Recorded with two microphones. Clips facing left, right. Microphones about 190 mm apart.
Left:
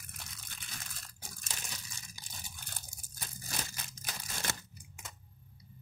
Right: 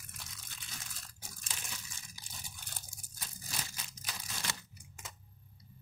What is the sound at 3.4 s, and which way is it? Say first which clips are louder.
Crunch: left 3 dB; 50° left (ahead or behind).